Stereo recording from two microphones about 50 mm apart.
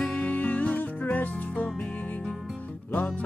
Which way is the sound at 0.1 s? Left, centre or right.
Left.